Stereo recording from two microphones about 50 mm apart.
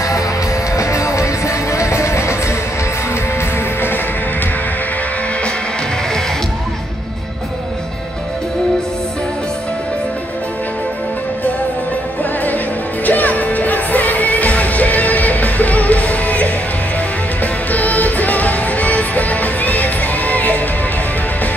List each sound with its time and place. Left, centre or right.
0.7 s music: left
13.0 s music: left